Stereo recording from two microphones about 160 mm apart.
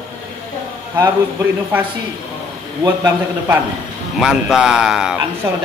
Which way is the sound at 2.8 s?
15° right (ahead or behind).